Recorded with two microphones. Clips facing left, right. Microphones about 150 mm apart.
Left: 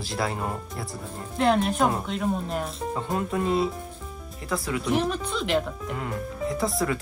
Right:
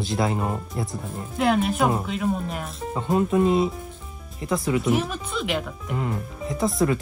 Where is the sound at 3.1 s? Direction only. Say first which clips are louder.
Right 6 dB; 20° right (ahead or behind).